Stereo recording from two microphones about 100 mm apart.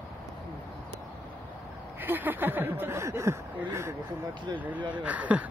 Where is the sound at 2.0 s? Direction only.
20° right (ahead or behind).